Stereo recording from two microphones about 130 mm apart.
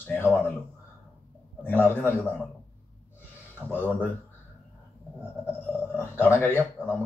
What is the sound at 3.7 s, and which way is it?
Speech, 15° left (ahead or behind).